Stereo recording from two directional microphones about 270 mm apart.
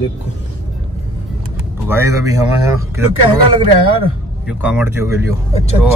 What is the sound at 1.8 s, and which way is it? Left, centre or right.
Speech, centre.